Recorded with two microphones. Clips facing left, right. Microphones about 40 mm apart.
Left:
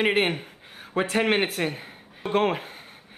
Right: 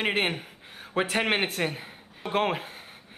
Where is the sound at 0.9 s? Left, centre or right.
Centre.